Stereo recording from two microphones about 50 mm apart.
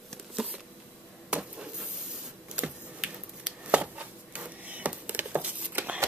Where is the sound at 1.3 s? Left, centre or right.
Right.